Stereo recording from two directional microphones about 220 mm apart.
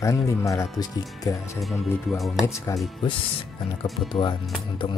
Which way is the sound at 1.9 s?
Centre (ahead or behind).